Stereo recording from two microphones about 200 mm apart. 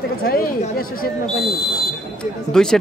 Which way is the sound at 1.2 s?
Centre (ahead or behind).